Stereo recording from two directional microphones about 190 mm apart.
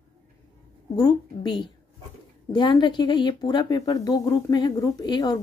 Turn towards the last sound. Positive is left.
turn(degrees=20)  # may be behind; listen again after turning